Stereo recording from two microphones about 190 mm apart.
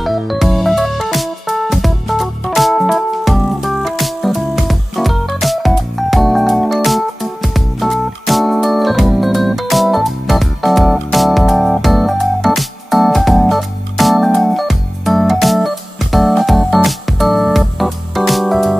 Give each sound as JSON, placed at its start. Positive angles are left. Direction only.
{"t": 0.0, "sound": "music", "side_deg": 0}